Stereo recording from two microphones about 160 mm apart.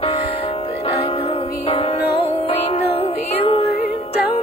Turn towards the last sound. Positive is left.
turn(degrees=40)  # may be behind; listen again after turning